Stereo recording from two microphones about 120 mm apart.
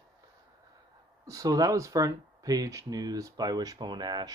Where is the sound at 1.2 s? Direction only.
30° right (ahead or behind).